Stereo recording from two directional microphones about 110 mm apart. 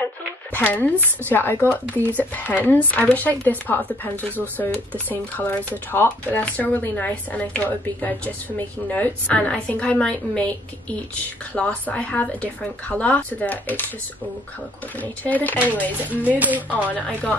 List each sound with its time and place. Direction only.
0.0 s speech: 15° left (ahead or behind)
11.5 s speech: 10° left (ahead or behind)
15.0 s speech: 15° left (ahead or behind)
16.3 s speech: 15° right (ahead or behind)
16.7 s speech: 15° left (ahead or behind)